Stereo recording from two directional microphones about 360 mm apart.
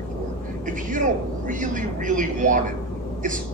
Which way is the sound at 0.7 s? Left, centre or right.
Right.